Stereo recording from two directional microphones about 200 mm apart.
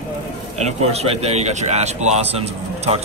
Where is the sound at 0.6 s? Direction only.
30° right (ahead or behind).